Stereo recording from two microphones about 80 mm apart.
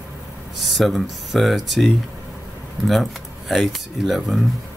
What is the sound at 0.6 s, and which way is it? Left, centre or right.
Speech, centre.